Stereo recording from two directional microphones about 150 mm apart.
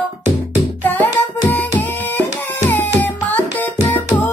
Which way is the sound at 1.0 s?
10° left (ahead or behind).